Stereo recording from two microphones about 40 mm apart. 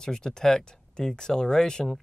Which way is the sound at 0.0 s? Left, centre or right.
Centre.